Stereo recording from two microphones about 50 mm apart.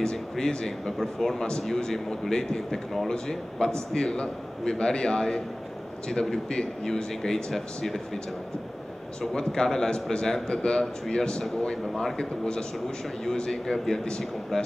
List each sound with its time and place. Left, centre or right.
0.0 s a man's voice: centre
0.9 s a man's voice: centre
9.2 s a man's voice: centre